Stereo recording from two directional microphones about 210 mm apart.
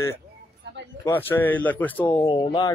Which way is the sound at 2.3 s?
20° left (ahead or behind).